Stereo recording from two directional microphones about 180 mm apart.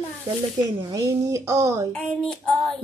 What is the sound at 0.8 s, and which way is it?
A woman's voice, 15° right (ahead or behind).